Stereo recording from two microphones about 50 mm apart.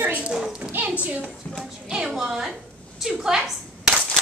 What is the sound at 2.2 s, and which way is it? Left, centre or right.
A woman's voice, centre.